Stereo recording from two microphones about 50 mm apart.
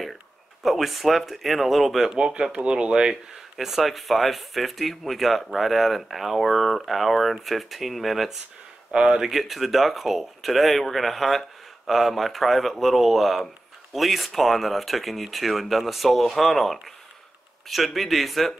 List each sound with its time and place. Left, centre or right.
0.0 s speech: centre
2.1 s speech: centre
3.5 s speech: centre
8.9 s speech: centre
9.3 s speech: centre